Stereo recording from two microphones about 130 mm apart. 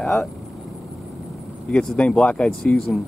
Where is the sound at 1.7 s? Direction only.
5° left (ahead or behind).